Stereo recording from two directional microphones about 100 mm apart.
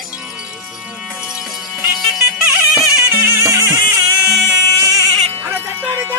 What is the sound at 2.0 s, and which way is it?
Music, centre (ahead or behind).